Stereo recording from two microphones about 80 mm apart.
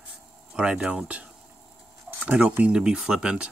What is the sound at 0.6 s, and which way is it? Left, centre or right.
Speech, centre.